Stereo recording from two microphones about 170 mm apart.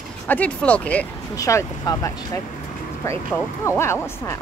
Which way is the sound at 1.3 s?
20° left (ahead or behind).